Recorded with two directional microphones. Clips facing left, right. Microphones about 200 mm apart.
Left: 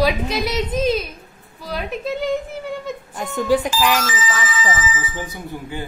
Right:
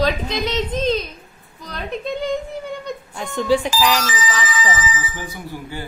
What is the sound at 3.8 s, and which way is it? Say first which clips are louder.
Speech: even; 5° left (ahead or behind).